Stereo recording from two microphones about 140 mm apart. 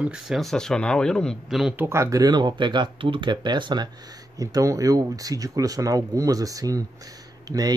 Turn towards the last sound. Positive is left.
turn(degrees=-25)  # may be behind; listen again after turning